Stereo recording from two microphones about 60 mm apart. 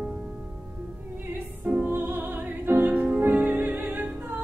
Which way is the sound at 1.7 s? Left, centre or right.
Right.